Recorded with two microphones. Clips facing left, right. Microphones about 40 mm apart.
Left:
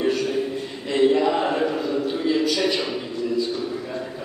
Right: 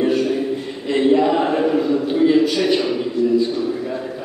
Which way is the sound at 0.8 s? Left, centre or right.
Centre.